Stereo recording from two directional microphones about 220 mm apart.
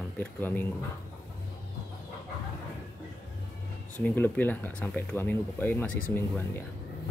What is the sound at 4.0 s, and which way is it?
Speech, 10° left (ahead or behind).